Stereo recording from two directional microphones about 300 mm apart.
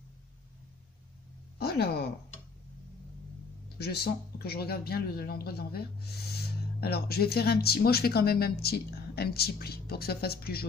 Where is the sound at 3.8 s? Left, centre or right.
Left.